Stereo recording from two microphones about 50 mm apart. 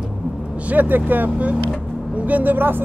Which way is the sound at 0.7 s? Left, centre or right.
Right.